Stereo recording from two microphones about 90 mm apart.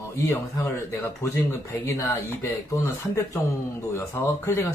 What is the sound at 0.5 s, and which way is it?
Speech, 30° left (ahead or behind).